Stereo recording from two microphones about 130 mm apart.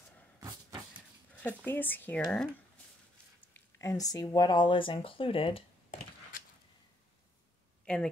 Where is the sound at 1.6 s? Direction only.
15° left (ahead or behind).